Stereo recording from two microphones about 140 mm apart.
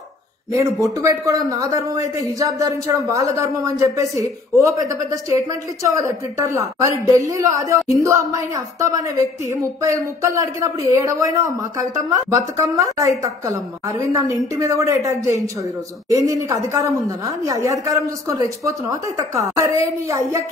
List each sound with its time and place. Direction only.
0.5 s a man's voice: 25° right (ahead or behind)